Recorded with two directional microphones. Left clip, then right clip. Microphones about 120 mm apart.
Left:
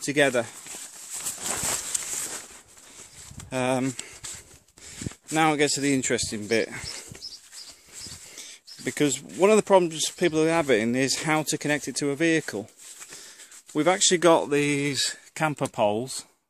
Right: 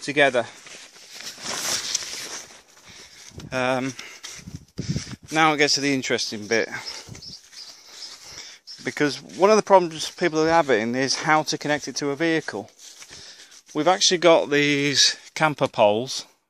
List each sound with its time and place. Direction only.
0.0 s speech: 30° left (ahead or behind)
3.4 s speech: 25° left (ahead or behind)
5.3 s speech: 15° left (ahead or behind)
6.3 s speech: 30° left (ahead or behind)
8.3 s a sound: 30° left (ahead or behind)
9.4 s speech: 25° left (ahead or behind)
13.7 s speech: 25° left (ahead or behind)
14.4 s speech: centre (ahead or behind)
14.8 s speech: 15° right (ahead or behind)